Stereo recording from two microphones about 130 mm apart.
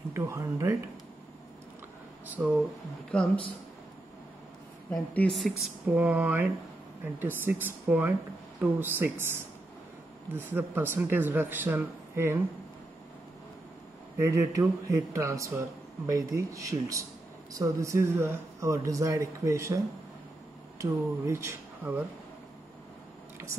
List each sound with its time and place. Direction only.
0.1 s speech: 20° right (ahead or behind)
2.2 s speech: 10° right (ahead or behind)
3.1 s speech: 5° left (ahead or behind)
4.9 s a woman's voice: 5° left (ahead or behind)
5.9 s speech: 10° right (ahead or behind)
14.1 s speech: 20° right (ahead or behind)
20.8 s speech: 20° right (ahead or behind)